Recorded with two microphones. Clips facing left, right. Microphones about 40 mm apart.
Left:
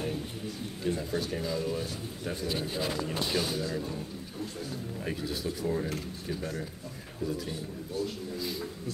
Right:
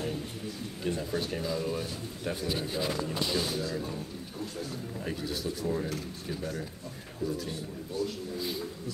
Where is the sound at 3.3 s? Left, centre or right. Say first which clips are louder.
Left 2 dB; left.